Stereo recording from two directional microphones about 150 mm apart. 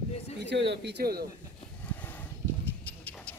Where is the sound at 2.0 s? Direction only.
10° left (ahead or behind).